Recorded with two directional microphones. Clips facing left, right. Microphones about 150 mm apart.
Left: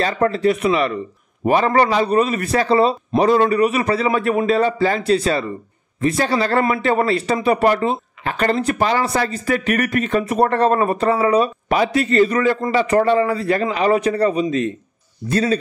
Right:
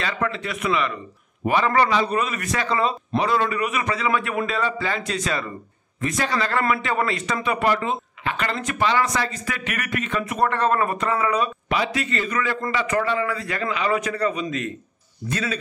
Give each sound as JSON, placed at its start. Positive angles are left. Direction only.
{"t": 0.0, "sound": "speech", "side_deg": 40}